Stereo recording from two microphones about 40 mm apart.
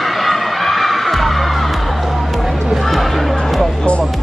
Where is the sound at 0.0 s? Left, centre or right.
Centre.